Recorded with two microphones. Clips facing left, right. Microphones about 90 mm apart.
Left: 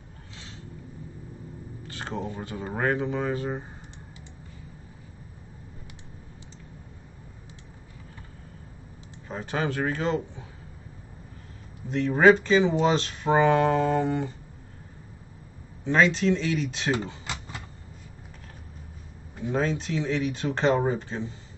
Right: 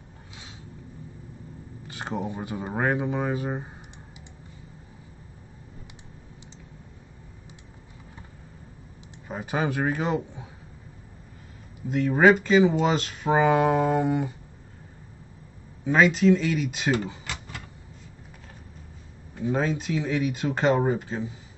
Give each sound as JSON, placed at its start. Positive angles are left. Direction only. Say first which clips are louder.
{"t": 1.9, "sound": "speech", "louder": "right 2 dB", "side_deg": -15}
{"t": 9.3, "sound": "speech", "louder": "right 1 dB", "side_deg": -10}
{"t": 11.9, "sound": "speech", "louder": "even", "side_deg": -5}
{"t": 15.8, "sound": "speech", "louder": "right 2 dB", "side_deg": -5}
{"t": 17.3, "sound": "vehicle", "louder": "left 1 dB", "side_deg": 20}
{"t": 19.5, "sound": "speech", "louder": "even", "side_deg": -5}